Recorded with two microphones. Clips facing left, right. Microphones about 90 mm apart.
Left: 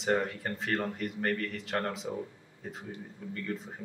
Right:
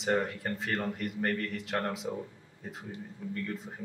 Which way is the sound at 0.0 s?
Centre (ahead or behind).